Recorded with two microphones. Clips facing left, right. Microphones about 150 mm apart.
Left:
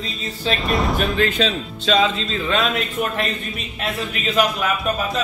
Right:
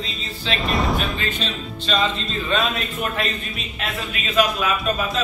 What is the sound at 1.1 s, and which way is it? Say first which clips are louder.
Speech: left 7 dB; 90° left.